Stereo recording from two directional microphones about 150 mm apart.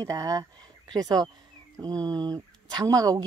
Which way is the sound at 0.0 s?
25° right (ahead or behind).